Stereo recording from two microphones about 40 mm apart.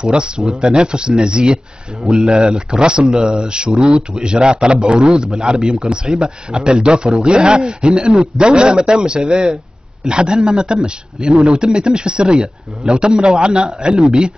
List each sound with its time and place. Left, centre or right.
0.0 s a man's voice: right